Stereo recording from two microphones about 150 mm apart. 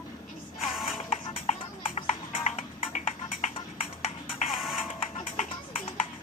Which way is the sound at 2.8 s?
60° left (ahead or behind).